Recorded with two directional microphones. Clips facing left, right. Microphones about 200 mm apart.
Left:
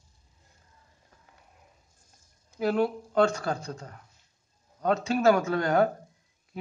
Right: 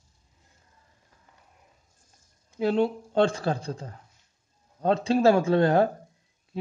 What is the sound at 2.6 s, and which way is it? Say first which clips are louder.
Speech: right 2 dB; 25° right (ahead or behind).